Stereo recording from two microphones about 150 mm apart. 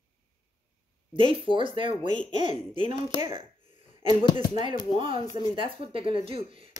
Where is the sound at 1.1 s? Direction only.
35° right (ahead or behind).